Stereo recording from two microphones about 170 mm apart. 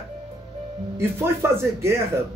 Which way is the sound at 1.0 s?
15° right (ahead or behind).